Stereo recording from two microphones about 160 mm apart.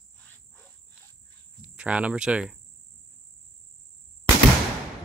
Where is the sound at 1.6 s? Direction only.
5° right (ahead or behind).